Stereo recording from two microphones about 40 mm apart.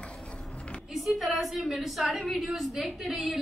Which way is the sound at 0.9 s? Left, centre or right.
Centre.